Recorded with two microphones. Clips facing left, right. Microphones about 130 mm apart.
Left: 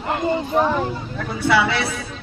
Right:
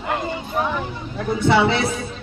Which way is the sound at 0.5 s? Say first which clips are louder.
Left 3 dB; 35° left (ahead or behind).